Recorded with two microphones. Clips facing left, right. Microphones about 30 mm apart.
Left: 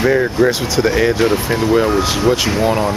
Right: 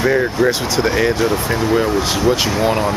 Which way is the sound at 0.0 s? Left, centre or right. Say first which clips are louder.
Left 2 dB; centre.